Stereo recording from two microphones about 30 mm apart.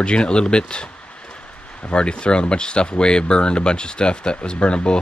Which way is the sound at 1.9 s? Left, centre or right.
Left.